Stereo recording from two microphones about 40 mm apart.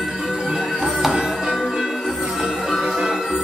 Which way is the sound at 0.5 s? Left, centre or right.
Centre.